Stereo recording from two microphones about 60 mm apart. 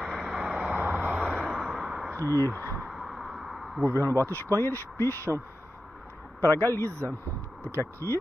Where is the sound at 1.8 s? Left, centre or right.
Centre.